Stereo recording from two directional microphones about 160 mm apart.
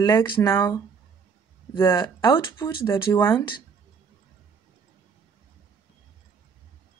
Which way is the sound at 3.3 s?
30° left (ahead or behind).